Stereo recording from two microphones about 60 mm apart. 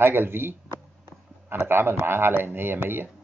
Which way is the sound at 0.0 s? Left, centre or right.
Right.